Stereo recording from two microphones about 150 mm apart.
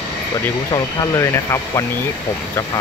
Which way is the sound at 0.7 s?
20° left (ahead or behind).